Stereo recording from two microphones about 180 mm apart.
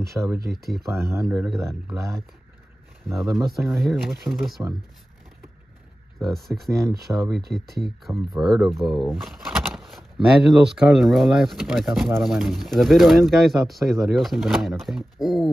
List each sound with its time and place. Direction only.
0.4 s speech: 60° right (ahead or behind)
0.7 s speech: centre (ahead or behind)
3.3 s speech: centre (ahead or behind)
6.1 s speech: centre (ahead or behind)